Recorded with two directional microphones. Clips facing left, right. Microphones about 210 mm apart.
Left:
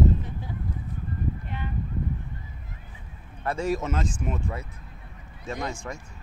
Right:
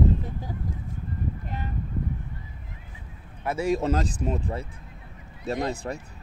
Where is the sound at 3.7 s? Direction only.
35° right (ahead or behind).